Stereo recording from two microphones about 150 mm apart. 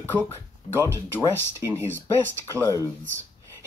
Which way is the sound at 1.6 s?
20° right (ahead or behind).